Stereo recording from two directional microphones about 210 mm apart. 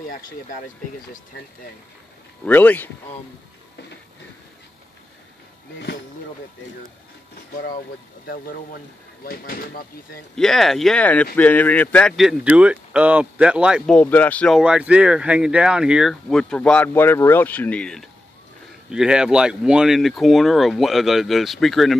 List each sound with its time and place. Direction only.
0.0 s speech: 40° left (ahead or behind)
2.4 s speech: 10° left (ahead or behind)
9.2 s speech: 45° left (ahead or behind)
10.3 s speech: centre (ahead or behind)